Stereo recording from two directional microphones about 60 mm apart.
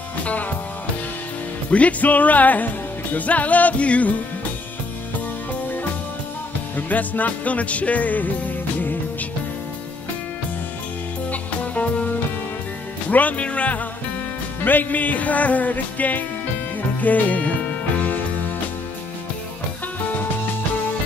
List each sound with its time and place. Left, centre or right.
0.2 s music: left
1.7 s music: left
6.9 s music: left
11.6 s music: left
14.6 s music: left